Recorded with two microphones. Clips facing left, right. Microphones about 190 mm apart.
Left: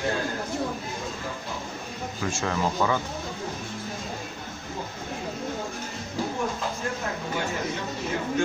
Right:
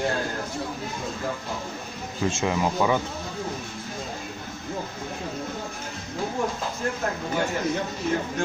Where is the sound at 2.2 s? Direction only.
20° right (ahead or behind).